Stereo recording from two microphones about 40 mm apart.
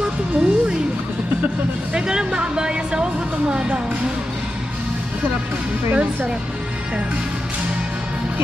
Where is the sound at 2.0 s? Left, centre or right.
Centre.